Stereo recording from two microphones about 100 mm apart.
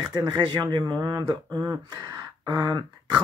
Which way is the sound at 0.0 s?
45° right (ahead or behind).